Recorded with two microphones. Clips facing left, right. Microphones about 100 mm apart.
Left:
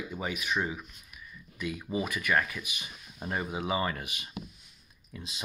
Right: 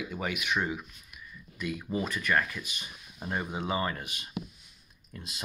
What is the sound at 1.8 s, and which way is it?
Speech, 10° left (ahead or behind).